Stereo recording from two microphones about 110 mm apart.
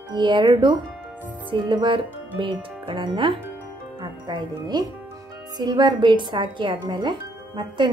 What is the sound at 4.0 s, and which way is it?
Speech, 40° right (ahead or behind).